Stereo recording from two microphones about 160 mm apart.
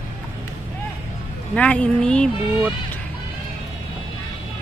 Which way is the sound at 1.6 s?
10° left (ahead or behind).